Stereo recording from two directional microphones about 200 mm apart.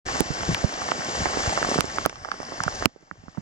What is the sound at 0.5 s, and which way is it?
Rain on surface, 5° right (ahead or behind).